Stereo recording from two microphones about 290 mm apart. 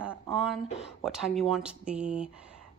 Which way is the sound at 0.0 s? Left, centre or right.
Centre.